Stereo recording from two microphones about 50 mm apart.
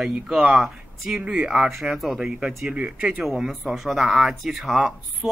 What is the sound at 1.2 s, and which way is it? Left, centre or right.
Speech, centre.